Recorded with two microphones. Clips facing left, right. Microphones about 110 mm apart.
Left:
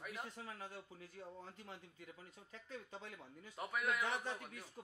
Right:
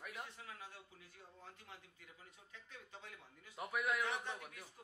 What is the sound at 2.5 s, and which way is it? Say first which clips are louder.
Speech: left 6 dB; 35° left (ahead or behind).